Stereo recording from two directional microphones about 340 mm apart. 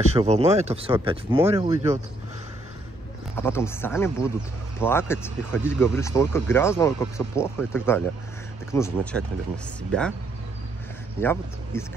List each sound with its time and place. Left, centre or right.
0.1 s speech: centre
3.3 s speech: centre
11.1 s speech: centre